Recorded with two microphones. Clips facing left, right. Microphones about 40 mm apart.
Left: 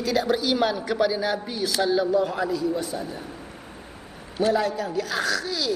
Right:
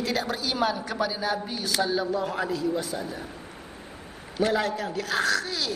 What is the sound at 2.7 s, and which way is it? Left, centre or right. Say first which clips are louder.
Speech: left 1 dB; right.